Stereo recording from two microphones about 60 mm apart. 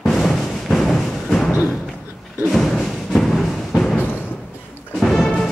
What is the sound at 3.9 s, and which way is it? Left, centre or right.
Music, left.